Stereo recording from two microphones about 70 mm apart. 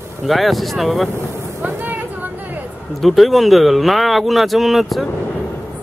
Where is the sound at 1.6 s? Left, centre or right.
Right.